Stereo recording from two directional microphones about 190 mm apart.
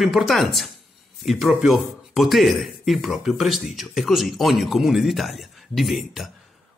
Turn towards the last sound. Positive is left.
turn(degrees=0)  # may be behind; listen again after turning